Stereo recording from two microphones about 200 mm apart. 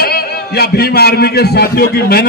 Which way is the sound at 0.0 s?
50° left (ahead or behind).